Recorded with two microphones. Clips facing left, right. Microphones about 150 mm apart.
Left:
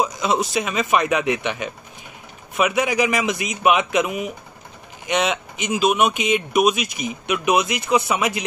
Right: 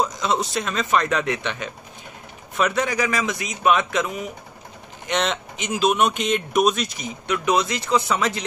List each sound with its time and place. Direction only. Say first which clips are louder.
0.0 s speech: left 2 dB; 10° left (ahead or behind)